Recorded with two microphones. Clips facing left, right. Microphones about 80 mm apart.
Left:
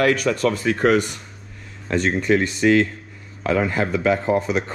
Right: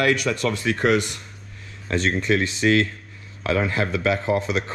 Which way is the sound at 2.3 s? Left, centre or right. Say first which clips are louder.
Left 4 dB; left.